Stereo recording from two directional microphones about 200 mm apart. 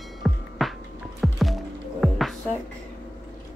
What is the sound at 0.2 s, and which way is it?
Music, centre (ahead or behind).